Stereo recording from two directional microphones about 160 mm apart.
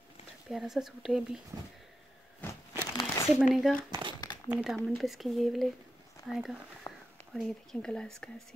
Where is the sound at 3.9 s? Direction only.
30° right (ahead or behind).